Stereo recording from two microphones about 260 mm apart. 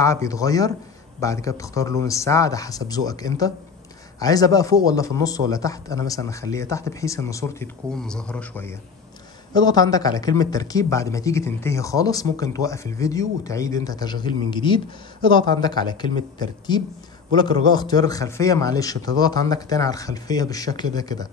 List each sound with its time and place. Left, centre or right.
0.0 s speech: centre